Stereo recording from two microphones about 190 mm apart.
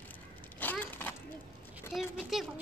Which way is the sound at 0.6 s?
10° left (ahead or behind).